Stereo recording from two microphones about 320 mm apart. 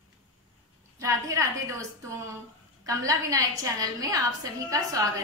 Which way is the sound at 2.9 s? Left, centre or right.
Centre.